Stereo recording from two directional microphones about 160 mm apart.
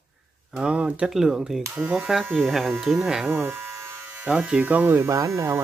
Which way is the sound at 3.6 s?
15° right (ahead or behind).